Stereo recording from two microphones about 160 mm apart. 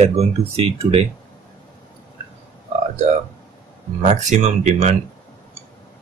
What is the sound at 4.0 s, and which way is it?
Speech, 45° right (ahead or behind).